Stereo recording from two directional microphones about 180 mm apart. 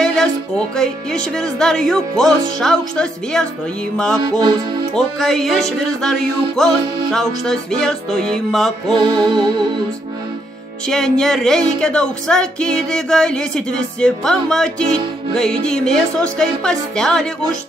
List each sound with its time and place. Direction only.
0.0 s speech: 5° left (ahead or behind)
8.9 s music: 25° right (ahead or behind)
10.9 s speech: 5° left (ahead or behind)